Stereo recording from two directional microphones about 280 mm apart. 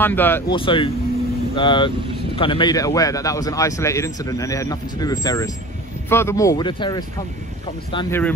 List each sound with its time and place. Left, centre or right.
0.0 s speech: centre
0.6 s speech: centre